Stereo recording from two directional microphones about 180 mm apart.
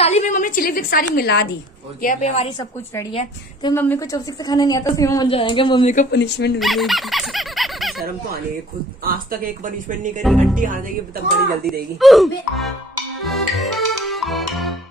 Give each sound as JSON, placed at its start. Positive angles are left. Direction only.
{"t": 0.0, "sound": "a woman's voice", "side_deg": 40}
{"t": 2.0, "sound": "a woman's voice", "side_deg": 45}
{"t": 3.1, "sound": "a woman's voice", "side_deg": 30}
{"t": 3.7, "sound": "a woman's voice", "side_deg": 10}
{"t": 5.3, "sound": "a woman's voice", "side_deg": 30}
{"t": 6.1, "sound": "speech", "side_deg": 70}
{"t": 6.6, "sound": "a sound", "side_deg": 0}
{"t": 9.0, "sound": "speech", "side_deg": -50}
{"t": 12.0, "sound": "speech", "side_deg": 0}
{"t": 13.2, "sound": "music", "side_deg": 0}